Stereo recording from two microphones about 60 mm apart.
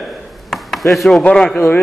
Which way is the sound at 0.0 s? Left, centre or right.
Centre.